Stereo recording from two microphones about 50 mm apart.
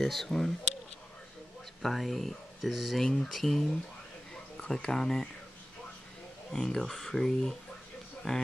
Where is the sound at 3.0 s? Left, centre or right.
Centre.